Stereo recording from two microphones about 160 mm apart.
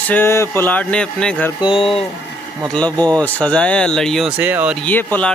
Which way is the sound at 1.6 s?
35° left (ahead or behind).